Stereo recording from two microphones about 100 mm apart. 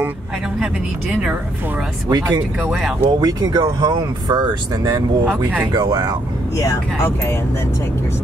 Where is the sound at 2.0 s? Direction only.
40° right (ahead or behind).